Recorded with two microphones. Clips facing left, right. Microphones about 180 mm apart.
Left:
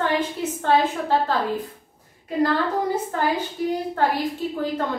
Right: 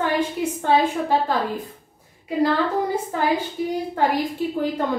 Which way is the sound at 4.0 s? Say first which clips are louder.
Right 2 dB; 15° right (ahead or behind).